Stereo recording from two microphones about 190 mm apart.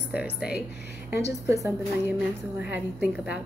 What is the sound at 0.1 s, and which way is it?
Speech, 5° right (ahead or behind).